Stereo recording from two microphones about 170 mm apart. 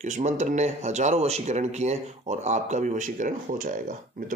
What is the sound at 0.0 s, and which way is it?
A man's voice, 45° right (ahead or behind).